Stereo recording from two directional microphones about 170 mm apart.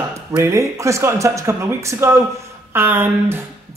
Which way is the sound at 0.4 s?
15° right (ahead or behind).